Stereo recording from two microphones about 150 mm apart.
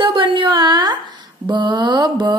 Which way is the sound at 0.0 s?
35° right (ahead or behind).